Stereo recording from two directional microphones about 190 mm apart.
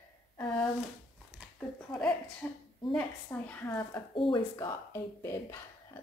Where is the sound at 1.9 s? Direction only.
5° left (ahead or behind).